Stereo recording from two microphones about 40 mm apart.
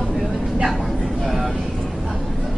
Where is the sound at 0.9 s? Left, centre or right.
Left.